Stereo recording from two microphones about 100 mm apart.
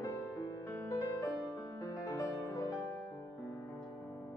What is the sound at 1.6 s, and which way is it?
Music, 35° left (ahead or behind).